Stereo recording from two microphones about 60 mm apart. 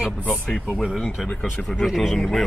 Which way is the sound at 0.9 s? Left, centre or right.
Centre.